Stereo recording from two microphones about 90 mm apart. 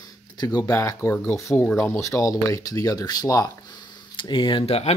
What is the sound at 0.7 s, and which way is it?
Speech, 35° left (ahead or behind).